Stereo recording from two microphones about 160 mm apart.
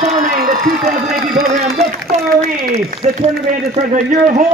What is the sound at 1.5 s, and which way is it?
Speech, 45° right (ahead or behind).